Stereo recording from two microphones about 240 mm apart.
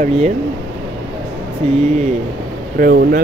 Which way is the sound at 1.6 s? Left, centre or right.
Right.